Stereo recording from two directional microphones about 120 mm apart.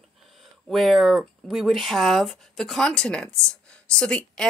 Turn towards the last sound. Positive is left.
turn(degrees=10)  # may be behind; listen again after turning